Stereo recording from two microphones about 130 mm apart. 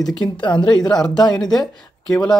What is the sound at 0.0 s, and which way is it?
Speech, centre (ahead or behind).